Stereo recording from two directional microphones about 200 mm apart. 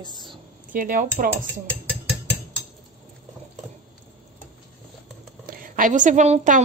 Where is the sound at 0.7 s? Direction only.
45° right (ahead or behind).